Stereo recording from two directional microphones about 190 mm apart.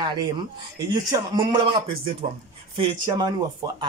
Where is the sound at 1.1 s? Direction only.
25° right (ahead or behind).